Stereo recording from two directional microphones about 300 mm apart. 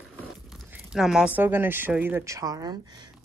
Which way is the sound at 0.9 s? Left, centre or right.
Centre.